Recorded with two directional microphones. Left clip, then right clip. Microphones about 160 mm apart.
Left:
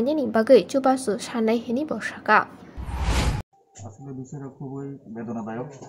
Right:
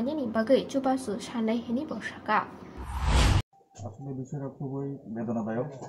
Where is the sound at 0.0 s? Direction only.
35° left (ahead or behind).